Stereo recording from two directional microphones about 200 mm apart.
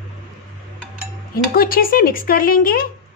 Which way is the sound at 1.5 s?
45° left (ahead or behind).